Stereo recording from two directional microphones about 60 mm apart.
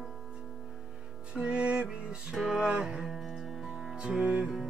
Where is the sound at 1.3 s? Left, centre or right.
Centre.